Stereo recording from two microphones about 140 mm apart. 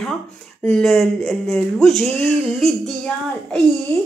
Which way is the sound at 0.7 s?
Centre (ahead or behind).